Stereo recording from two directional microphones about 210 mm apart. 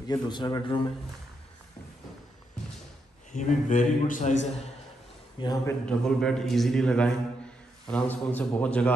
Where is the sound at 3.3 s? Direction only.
35° left (ahead or behind).